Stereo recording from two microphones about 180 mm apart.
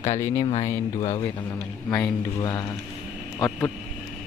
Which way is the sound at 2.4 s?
20° left (ahead or behind).